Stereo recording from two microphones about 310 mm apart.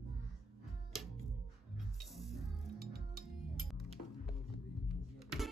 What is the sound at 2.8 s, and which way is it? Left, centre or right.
Music, right.